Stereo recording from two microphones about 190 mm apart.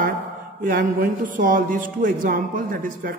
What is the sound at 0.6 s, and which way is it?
A man's voice, 45° right (ahead or behind).